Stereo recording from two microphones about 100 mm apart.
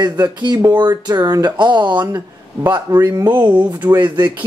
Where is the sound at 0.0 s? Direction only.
45° right (ahead or behind).